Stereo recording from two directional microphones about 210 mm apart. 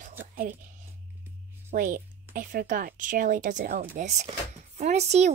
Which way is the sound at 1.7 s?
40° right (ahead or behind).